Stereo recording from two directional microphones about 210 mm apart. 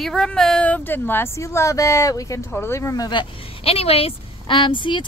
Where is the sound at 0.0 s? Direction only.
Centre (ahead or behind).